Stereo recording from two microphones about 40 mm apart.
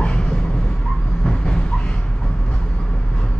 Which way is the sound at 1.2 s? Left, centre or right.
Left.